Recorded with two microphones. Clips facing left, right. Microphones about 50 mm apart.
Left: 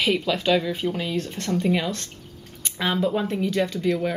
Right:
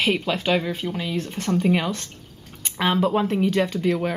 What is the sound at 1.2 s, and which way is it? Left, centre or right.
Speech, centre.